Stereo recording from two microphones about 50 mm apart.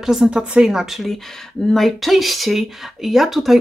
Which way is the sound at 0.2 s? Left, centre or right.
Centre.